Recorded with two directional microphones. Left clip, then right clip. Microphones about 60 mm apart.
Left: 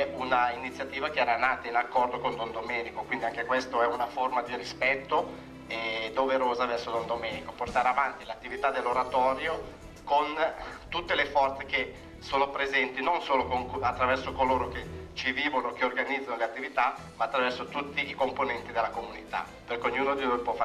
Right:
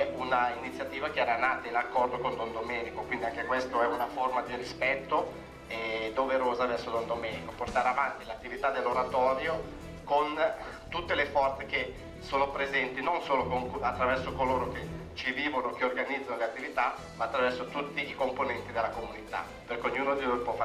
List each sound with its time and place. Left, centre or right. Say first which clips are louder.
0.0 s a man's voice: left 2 dB; left